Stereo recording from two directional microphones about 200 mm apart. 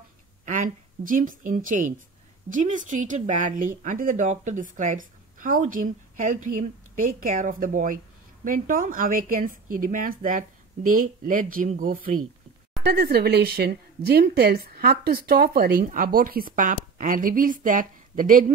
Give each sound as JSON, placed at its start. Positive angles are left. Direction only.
{"t": 0.5, "sound": "a woman's voice", "side_deg": -40}